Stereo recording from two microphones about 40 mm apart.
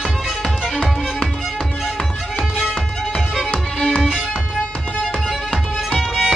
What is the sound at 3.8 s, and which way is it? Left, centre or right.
Music, centre.